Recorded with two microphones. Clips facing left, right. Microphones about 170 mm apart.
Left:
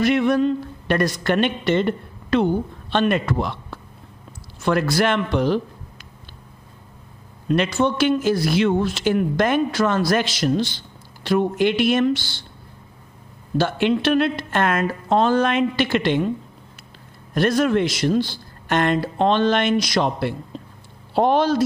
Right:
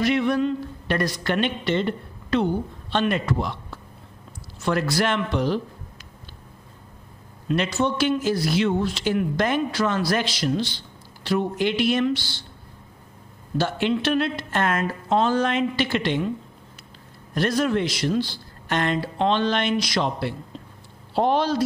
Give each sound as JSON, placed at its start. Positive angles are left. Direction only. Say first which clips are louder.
{"t": 0.0, "sound": "a man's voice", "louder": "left 3 dB", "side_deg": 50}
{"t": 7.4, "sound": "a man's voice", "louder": "left 3 dB", "side_deg": 55}
{"t": 13.6, "sound": "a woman's voice", "louder": "left 3 dB", "side_deg": 60}
{"t": 17.3, "sound": "a man's voice", "louder": "left 4 dB", "side_deg": 50}